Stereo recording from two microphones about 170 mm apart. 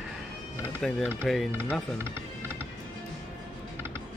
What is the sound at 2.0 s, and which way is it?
Music, 15° right (ahead or behind).